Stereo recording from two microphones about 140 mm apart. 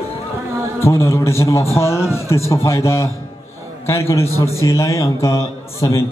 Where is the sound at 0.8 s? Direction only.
20° left (ahead or behind).